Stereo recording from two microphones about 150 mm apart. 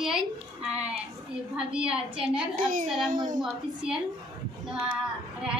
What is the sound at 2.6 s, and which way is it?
Speech, 65° right (ahead or behind).